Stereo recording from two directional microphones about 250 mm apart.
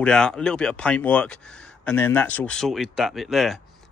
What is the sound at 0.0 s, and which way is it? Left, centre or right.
Speech, centre.